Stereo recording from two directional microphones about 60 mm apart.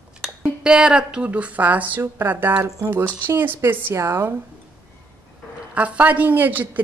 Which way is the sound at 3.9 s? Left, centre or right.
Right.